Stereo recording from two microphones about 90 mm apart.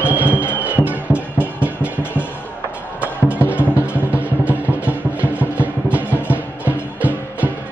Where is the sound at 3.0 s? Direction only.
15° right (ahead or behind).